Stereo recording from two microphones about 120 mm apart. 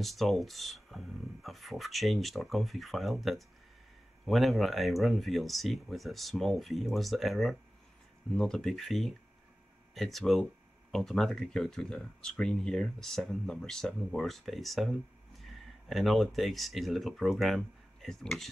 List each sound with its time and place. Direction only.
0.0 s speech: centre (ahead or behind)